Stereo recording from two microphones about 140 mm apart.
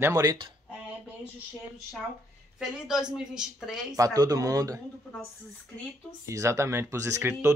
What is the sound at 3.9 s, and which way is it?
Speech, 25° right (ahead or behind).